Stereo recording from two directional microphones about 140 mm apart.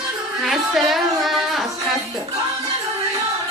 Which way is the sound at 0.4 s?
Centre (ahead or behind).